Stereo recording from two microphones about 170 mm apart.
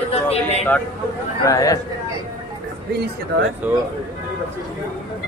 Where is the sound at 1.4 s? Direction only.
20° left (ahead or behind).